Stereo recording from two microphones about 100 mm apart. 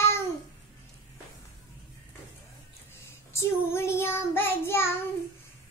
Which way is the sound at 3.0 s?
25° left (ahead or behind).